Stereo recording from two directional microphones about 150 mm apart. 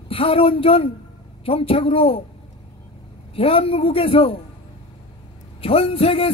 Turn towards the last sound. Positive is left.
turn(degrees=40)  # may be behind; listen again after turning